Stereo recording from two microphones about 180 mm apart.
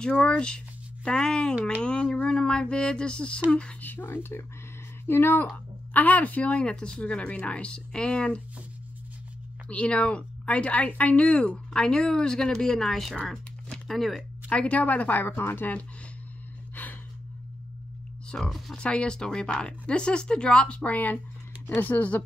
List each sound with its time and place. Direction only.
0.0 s speech: 5° left (ahead or behind)
1.5 s speech: 10° right (ahead or behind)
1.8 s speech: 5° left (ahead or behind)
9.7 s speech: 5° left (ahead or behind)
16.8 s gasp: 10° left (ahead or behind)
18.3 s speech: centre (ahead or behind)